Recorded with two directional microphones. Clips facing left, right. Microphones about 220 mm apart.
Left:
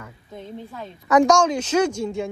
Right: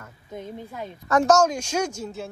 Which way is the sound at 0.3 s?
15° right (ahead or behind).